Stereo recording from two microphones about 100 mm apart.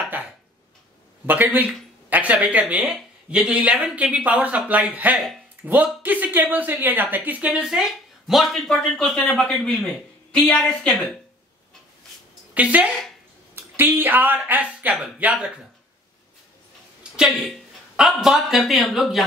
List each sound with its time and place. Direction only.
1.2 s speech: 20° right (ahead or behind)
8.3 s speech: centre (ahead or behind)
12.5 s speech: 15° right (ahead or behind)
17.2 s speech: 5° right (ahead or behind)